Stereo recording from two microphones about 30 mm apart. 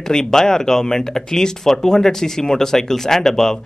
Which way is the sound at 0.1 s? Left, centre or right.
Centre.